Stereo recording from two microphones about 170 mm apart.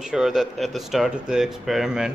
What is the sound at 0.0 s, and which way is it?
Speech, 5° right (ahead or behind).